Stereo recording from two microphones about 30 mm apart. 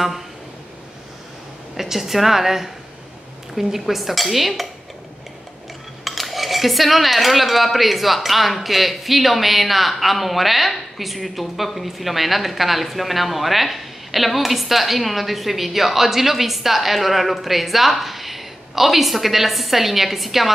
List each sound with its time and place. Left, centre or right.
1.8 s a woman's voice: centre
3.5 s dishes: centre
6.0 s dishes: centre